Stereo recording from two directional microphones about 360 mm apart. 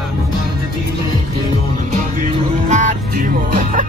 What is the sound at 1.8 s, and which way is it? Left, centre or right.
Music, right.